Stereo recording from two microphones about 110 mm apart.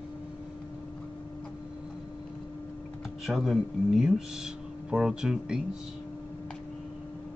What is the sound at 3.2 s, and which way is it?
Speech, centre (ahead or behind).